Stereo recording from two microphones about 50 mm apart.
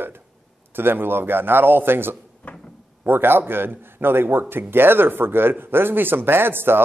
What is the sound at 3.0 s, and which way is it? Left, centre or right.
A man's voice, right.